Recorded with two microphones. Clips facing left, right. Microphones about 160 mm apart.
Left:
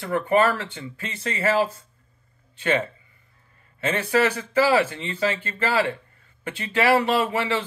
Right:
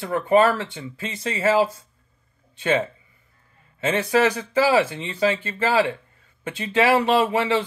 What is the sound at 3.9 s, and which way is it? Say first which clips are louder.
A man's voice: right 2 dB; 15° right (ahead or behind).